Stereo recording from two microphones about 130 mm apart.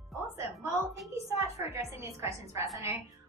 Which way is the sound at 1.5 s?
20° right (ahead or behind).